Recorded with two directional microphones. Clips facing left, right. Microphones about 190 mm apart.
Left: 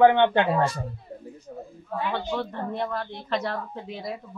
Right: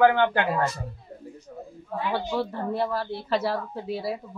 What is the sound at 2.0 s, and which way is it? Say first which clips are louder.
Speech: right 2 dB; 10° right (ahead or behind).